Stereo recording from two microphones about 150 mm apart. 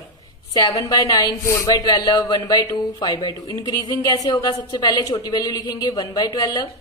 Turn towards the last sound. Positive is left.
turn(degrees=25)  # may be behind; listen again after turning